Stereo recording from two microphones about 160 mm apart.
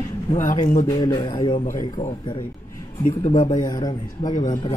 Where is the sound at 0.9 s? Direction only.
30° left (ahead or behind).